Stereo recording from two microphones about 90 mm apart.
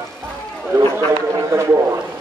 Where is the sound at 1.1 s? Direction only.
35° right (ahead or behind).